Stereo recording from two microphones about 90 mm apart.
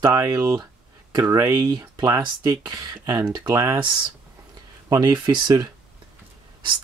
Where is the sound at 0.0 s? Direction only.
35° right (ahead or behind).